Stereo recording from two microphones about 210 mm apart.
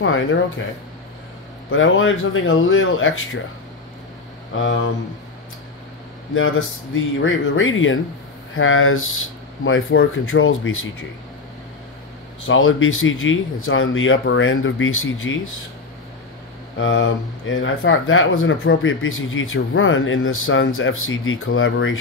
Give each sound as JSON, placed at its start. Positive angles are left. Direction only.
{"t": 1.7, "sound": "speech", "side_deg": 65}
{"t": 4.6, "sound": "speech", "side_deg": 65}
{"t": 6.3, "sound": "speech", "side_deg": 70}
{"t": 12.4, "sound": "speech", "side_deg": 70}
{"t": 16.7, "sound": "speech", "side_deg": 65}